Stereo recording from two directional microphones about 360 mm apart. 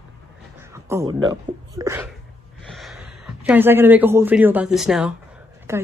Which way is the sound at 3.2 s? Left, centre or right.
Centre.